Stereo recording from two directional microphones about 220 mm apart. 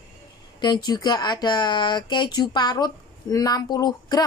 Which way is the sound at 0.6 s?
20° left (ahead or behind).